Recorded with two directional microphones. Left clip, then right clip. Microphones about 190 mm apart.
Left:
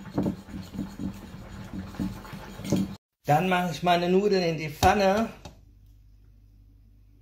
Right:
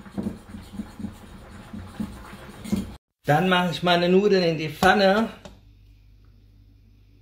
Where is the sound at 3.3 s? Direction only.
20° right (ahead or behind).